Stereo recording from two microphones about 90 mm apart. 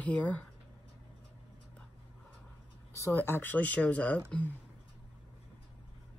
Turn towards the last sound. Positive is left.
turn(degrees=20)  # may be behind; listen again after turning